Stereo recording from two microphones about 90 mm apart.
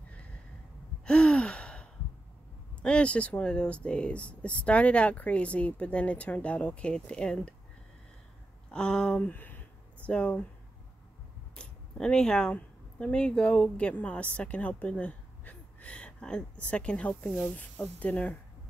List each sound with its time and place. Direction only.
1.0 s gasp: 10° left (ahead or behind)
2.8 s speech: 10° left (ahead or behind)
8.7 s speech: 10° left (ahead or behind)
11.5 s speech: 10° left (ahead or behind)